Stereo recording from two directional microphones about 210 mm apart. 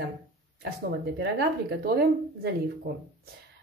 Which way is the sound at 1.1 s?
50° right (ahead or behind).